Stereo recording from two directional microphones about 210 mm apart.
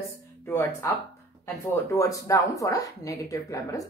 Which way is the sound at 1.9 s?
15° left (ahead or behind).